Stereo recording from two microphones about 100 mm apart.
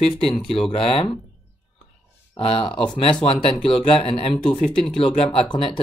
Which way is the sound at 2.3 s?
65° left (ahead or behind).